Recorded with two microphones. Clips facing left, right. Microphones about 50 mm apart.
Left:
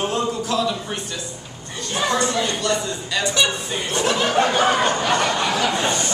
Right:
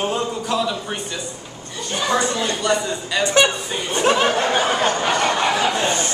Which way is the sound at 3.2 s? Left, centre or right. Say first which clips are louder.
Right 5 dB; right.